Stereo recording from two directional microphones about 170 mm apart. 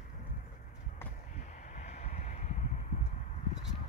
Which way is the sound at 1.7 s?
40° left (ahead or behind).